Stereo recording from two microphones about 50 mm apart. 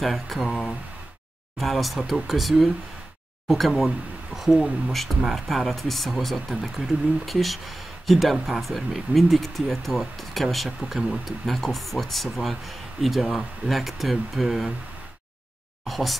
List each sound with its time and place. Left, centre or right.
0.0 s speech: centre
15.9 s speech: centre